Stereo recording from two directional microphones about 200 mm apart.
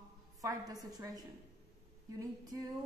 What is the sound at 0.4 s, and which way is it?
A woman's voice, 15° right (ahead or behind).